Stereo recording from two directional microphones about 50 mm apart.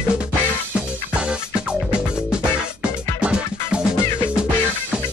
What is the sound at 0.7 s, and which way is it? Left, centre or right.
Music, right.